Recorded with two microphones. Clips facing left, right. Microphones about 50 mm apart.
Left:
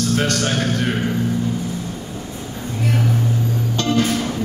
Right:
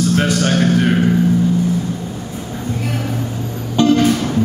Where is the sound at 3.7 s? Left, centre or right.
Centre.